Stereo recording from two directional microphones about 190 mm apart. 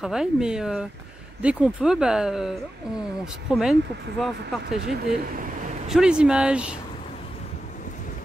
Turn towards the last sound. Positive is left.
turn(degrees=-5)  # may be behind; listen again after turning